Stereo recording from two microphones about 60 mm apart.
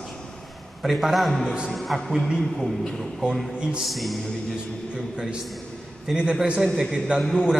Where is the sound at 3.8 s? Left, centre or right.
Centre.